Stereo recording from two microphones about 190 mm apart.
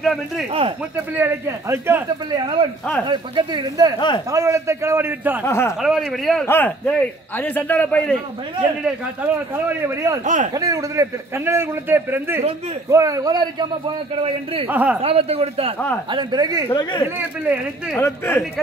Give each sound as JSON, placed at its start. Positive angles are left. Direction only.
{"t": 0.0, "sound": "speech", "side_deg": 0}
{"t": 0.5, "sound": "speech", "side_deg": -30}
{"t": 1.1, "sound": "a man's voice", "side_deg": -10}
{"t": 2.4, "sound": "a man's voice", "side_deg": -25}
{"t": 5.4, "sound": "a man's voice", "side_deg": 15}
{"t": 5.8, "sound": "a man's voice", "side_deg": 0}
{"t": 8.8, "sound": "a man's voice", "side_deg": -10}
{"t": 10.2, "sound": "a man's voice", "side_deg": -40}
{"t": 10.5, "sound": "a man's voice", "side_deg": -20}
{"t": 14.7, "sound": "a man's voice", "side_deg": -10}
{"t": 15.0, "sound": "a man's voice", "side_deg": -30}
{"t": 16.6, "sound": "speech", "side_deg": 25}
{"t": 17.9, "sound": "a man's voice", "side_deg": 10}